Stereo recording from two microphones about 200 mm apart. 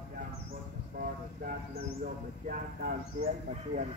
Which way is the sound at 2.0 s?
45° right (ahead or behind).